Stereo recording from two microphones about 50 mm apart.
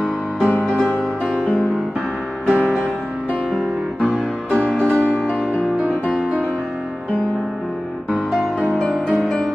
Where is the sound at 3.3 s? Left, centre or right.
Left.